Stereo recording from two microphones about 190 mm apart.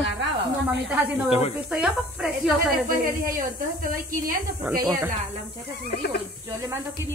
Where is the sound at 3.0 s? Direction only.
45° right (ahead or behind).